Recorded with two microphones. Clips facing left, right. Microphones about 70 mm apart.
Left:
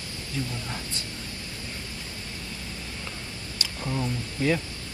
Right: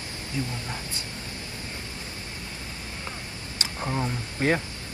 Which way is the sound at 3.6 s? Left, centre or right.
Right.